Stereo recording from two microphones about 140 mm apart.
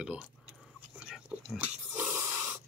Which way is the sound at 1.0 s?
5° right (ahead or behind).